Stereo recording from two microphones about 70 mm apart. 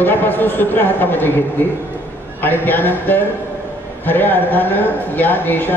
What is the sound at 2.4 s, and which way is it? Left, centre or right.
Speech, left.